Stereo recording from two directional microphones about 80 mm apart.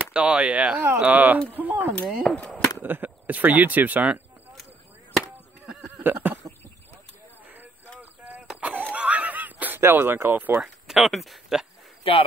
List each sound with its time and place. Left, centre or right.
0.0 s speech: centre
2.2 s speech: centre
2.8 s speech: right
5.9 s a sound: right
8.5 s a sound: centre
10.6 s speech: centre
12.0 s speech: left